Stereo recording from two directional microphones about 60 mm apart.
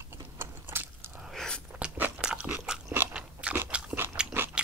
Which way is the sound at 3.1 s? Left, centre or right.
Centre.